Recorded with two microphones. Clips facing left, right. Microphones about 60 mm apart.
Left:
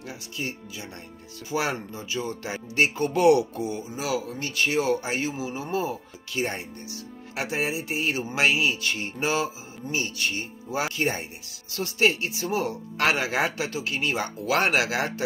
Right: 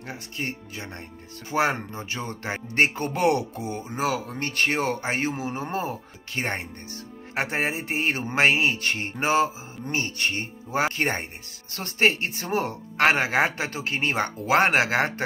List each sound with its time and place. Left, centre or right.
0.0 s speech: right
3.8 s speech: right
14.4 s speech: right